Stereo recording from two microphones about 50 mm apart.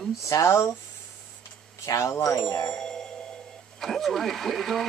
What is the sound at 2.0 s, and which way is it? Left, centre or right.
Speech, left.